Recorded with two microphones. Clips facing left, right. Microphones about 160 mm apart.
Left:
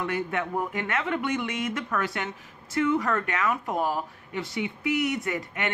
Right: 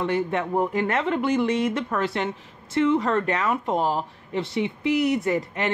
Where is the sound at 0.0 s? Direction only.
30° right (ahead or behind).